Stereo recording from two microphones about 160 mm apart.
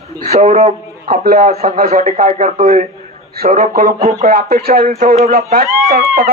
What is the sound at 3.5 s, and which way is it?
Speech, 60° right (ahead or behind).